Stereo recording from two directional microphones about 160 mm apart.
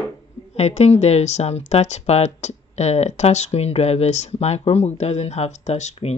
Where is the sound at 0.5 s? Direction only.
45° left (ahead or behind).